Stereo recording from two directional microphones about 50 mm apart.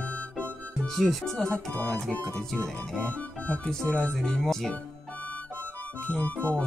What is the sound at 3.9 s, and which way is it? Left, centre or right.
Music, left.